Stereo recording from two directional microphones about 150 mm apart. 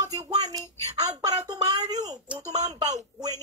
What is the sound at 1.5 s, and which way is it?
Speech, 25° right (ahead or behind).